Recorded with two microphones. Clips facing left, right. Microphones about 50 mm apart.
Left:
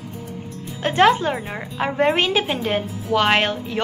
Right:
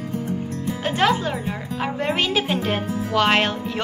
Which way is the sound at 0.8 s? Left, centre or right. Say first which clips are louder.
Left 5 dB; left.